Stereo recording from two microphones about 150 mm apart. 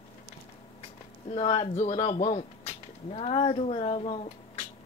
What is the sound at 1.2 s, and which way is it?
Speech, 45° left (ahead or behind).